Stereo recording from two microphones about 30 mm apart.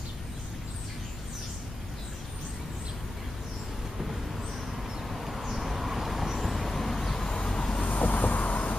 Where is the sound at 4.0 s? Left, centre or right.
Centre; by 7.9 s left.